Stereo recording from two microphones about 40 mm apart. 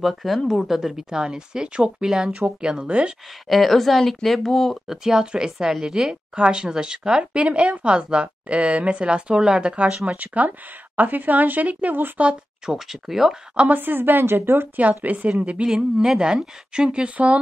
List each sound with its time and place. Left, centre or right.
0.0 s speech: centre; by 3.2 s right
3.4 s speech: centre
4.8 s speech: centre
6.3 s speech: right
10.0 s speech: right
12.6 s speech: centre
13.7 s a woman's voice: right
15.1 s speech: right
15.6 s speech: centre; by 17.4 s right